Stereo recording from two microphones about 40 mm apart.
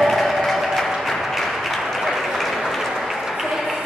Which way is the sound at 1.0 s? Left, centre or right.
Centre.